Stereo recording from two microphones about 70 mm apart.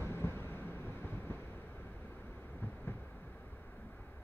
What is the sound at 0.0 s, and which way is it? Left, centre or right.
Vehicle, left.